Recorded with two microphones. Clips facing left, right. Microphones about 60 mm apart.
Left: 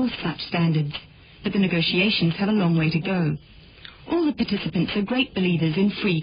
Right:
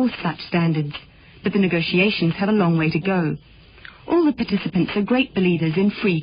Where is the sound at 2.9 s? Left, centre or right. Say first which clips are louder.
Right 4 dB; right.